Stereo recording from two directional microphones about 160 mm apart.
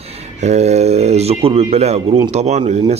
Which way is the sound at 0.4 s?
45° right (ahead or behind).